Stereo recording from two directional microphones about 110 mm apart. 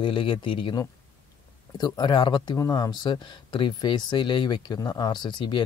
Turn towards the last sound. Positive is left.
turn(degrees=45)  # may be behind; listen again after turning